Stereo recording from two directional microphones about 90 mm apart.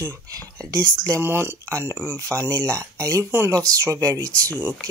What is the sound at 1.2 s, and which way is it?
Speech, 25° right (ahead or behind).